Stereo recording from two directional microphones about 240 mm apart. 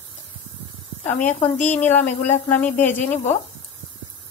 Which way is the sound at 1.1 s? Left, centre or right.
Left.